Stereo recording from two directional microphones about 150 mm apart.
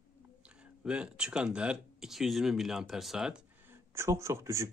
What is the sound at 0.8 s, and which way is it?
Speech, 5° right (ahead or behind).